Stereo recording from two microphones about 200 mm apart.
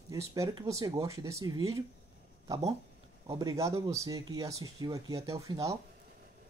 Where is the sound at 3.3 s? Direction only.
20° right (ahead or behind).